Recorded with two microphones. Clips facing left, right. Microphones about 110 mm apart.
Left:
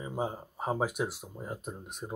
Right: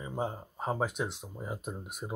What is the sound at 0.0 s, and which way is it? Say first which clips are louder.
Speech: left 1 dB; 10° left (ahead or behind).